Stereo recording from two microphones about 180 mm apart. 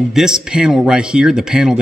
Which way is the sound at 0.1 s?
5° right (ahead or behind).